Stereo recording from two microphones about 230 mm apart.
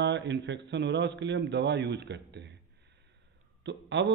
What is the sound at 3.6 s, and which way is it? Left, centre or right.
Speech, right.